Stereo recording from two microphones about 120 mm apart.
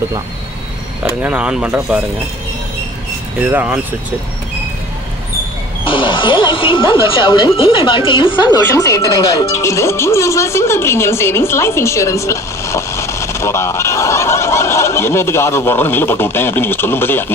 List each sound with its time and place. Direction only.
1.2 s speech: 10° right (ahead or behind)
3.4 s speech: 15° right (ahead or behind)
5.9 s speech: 45° left (ahead or behind); by 17.3 s 20° left (ahead or behind)